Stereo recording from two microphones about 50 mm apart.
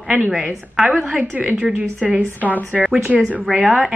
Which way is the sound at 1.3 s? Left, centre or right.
Right.